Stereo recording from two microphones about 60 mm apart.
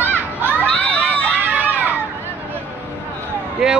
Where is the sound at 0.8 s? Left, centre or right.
Left.